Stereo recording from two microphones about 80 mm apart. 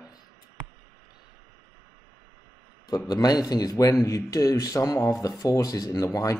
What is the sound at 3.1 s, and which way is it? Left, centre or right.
Speech, left.